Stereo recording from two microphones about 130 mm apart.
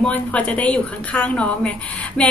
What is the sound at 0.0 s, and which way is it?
A woman's voice, 10° left (ahead or behind).